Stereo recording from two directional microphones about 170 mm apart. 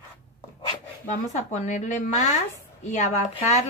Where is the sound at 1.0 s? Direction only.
45° left (ahead or behind).